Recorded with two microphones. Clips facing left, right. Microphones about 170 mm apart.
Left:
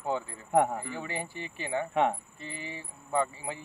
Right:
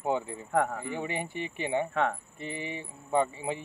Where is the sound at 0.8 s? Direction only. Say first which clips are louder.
Right 3 dB; 20° right (ahead or behind).